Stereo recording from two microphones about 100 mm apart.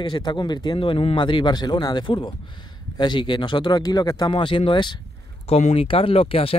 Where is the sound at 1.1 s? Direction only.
50° left (ahead or behind).